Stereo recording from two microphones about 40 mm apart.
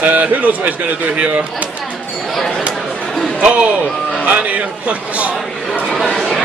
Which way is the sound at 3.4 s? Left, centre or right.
Right.